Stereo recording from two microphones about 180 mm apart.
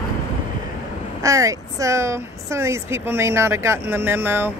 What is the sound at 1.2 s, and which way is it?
Speech, 20° right (ahead or behind).